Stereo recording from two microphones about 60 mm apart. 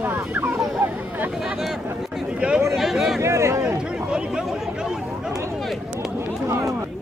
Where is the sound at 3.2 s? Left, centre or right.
Right.